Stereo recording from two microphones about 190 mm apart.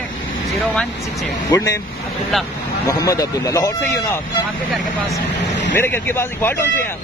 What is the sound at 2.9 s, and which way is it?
Speech, 20° left (ahead or behind).